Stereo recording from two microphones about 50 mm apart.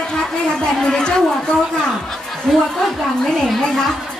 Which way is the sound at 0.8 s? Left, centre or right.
Centre.